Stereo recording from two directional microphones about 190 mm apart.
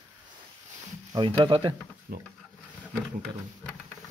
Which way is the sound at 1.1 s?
20° right (ahead or behind).